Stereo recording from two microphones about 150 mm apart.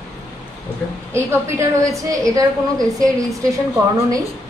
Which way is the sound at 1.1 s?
20° right (ahead or behind).